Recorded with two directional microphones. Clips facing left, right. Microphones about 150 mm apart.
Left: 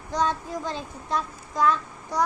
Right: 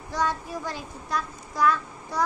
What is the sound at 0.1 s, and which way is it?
A child's voice, 20° left (ahead or behind).